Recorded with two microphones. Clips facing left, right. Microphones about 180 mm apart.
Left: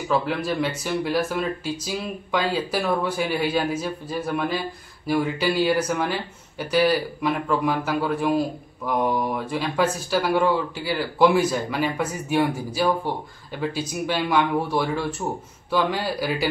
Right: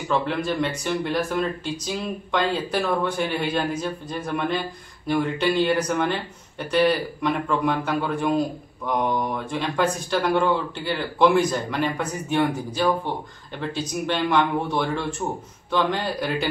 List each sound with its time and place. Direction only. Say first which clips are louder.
0.1 s a man's voice: even; 5° left (ahead or behind)